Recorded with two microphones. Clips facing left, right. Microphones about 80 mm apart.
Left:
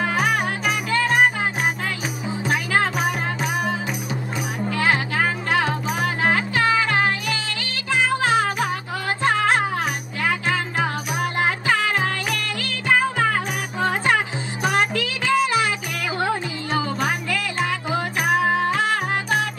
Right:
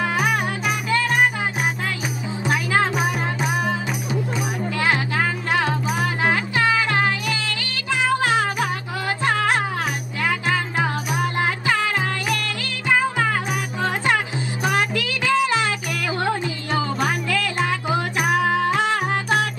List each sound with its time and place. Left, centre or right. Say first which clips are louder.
0.2 s music: even; left
2.4 s music: right 1 dB; right
4.7 s music: left 1 dB; left
9.2 s music: left 2 dB; left
11.7 s music: left 1 dB; left
18.7 s music: right 1 dB; right